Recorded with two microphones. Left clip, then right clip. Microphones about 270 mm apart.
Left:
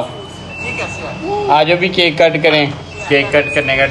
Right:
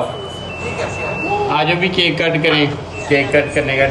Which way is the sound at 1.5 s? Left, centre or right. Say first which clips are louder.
Left 7 dB; right.